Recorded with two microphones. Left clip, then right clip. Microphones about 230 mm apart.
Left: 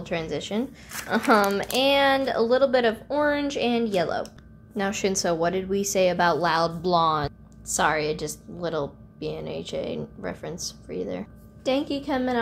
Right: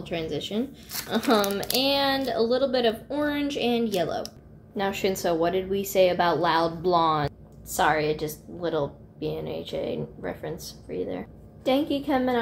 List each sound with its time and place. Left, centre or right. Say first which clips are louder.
0.0 s speech: left 1 dB; centre
4.7 s a woman's voice: left 1 dB; left